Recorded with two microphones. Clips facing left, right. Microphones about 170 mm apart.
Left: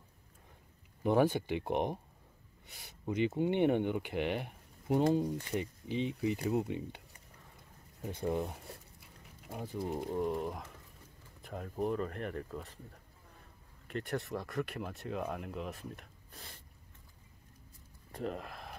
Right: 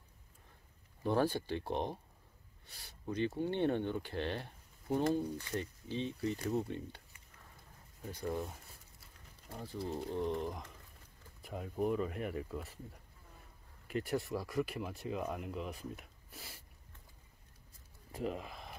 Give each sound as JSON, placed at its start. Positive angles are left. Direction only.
{"t": 1.0, "sound": "speech", "side_deg": 15}
{"t": 8.1, "sound": "speech", "side_deg": 25}
{"t": 13.8, "sound": "speech", "side_deg": -5}
{"t": 18.1, "sound": "a sound", "side_deg": 0}